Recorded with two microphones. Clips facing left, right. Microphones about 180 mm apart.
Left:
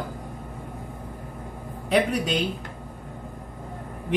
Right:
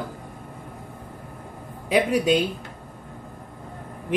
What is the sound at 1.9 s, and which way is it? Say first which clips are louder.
Speech: right 3 dB; 10° right (ahead or behind).